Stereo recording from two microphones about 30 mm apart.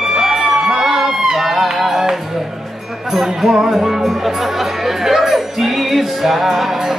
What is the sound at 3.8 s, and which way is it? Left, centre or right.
Music, centre.